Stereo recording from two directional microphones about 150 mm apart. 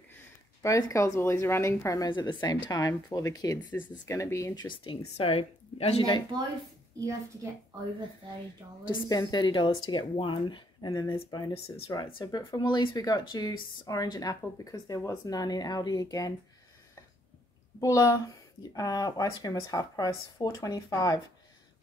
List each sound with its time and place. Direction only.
0.6 s speech: 20° left (ahead or behind)
4.6 s a woman's voice: 40° left (ahead or behind)
8.8 s a woman's voice: 30° left (ahead or behind)
10.9 s speech: 20° left (ahead or behind)
17.7 s speech: 20° left (ahead or behind)